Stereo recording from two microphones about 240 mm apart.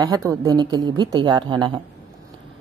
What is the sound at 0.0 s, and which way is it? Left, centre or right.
Speech, centre.